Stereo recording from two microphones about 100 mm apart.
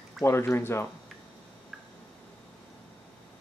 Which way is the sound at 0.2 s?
25° left (ahead or behind).